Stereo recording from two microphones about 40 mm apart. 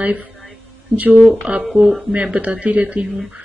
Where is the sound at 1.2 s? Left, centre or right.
Centre.